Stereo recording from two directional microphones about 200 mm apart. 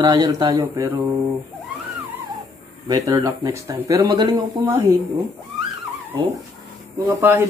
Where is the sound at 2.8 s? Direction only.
15° right (ahead or behind).